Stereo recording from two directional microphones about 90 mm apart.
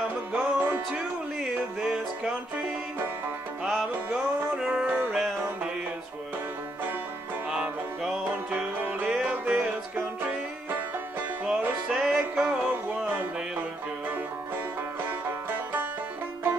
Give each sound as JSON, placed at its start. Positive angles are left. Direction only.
{"t": 0.3, "sound": "music", "side_deg": -15}
{"t": 1.8, "sound": "music", "side_deg": -10}
{"t": 3.6, "sound": "music", "side_deg": 0}
{"t": 7.4, "sound": "music", "side_deg": -10}
{"t": 11.4, "sound": "music", "side_deg": -10}
{"t": 15.0, "sound": "music", "side_deg": -20}